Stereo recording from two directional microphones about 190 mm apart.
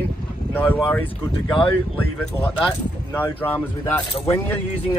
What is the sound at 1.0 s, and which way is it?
Speech, 25° left (ahead or behind).